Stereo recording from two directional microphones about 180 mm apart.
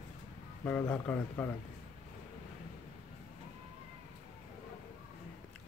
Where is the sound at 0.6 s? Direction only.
5° left (ahead or behind).